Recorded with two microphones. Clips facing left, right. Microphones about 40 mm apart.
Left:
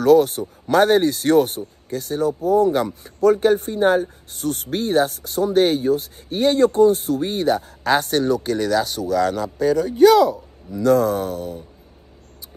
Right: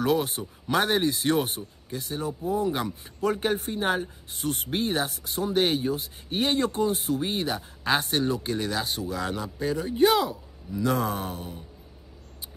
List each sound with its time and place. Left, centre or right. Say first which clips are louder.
0.0 s speech: left 11 dB; right
3.0 s speech: left 11 dB; right
7.2 s speech: left 9 dB; centre; by 11.5 s right